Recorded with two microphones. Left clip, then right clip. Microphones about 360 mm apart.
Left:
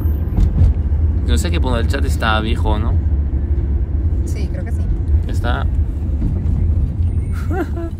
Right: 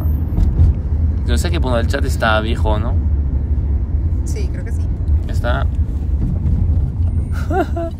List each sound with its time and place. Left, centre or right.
1.3 s speech: centre
5.4 s speech: centre
7.4 s speech: centre